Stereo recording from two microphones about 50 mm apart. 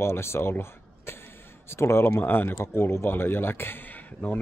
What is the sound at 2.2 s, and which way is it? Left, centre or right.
Speech, left.